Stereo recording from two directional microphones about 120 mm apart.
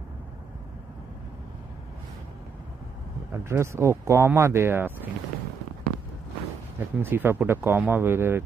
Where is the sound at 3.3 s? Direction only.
20° right (ahead or behind).